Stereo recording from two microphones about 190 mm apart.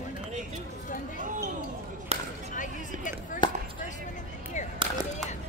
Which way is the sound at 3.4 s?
25° left (ahead or behind).